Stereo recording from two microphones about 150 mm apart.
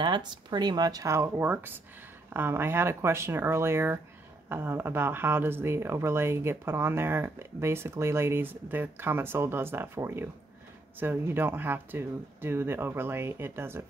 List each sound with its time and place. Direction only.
0.0 s speech: 30° right (ahead or behind); by 13.8 s 15° right (ahead or behind)